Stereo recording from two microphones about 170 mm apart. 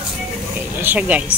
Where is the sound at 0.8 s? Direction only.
10° right (ahead or behind).